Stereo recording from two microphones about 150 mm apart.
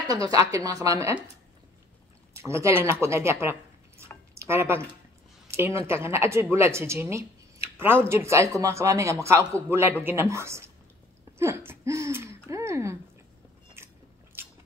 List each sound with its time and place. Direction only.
0.1 s a woman's voice: 25° right (ahead or behind)
2.3 s a woman's voice: 20° right (ahead or behind)
13.8 s biting: 15° right (ahead or behind)